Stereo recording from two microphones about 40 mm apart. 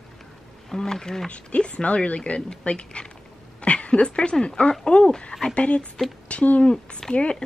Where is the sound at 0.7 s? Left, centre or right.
Centre.